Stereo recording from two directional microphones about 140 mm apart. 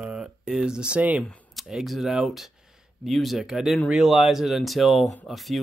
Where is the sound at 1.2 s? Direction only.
5° left (ahead or behind).